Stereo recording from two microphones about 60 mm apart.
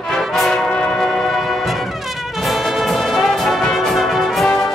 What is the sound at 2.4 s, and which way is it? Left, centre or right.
Brass instrument, centre.